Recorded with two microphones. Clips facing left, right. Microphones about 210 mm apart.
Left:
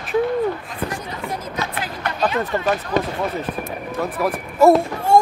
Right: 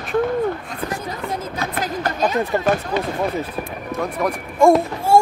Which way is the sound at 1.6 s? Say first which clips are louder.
Right 5 dB; 40° right (ahead or behind).